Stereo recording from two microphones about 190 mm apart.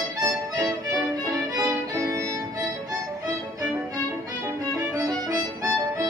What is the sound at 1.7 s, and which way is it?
Music, 20° right (ahead or behind).